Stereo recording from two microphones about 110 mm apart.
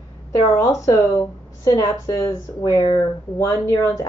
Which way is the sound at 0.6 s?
30° left (ahead or behind).